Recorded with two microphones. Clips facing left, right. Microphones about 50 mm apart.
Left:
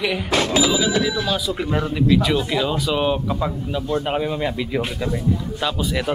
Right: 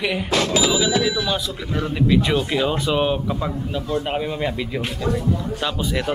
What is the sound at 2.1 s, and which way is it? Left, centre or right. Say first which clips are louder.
Speech: left 1 dB; centre.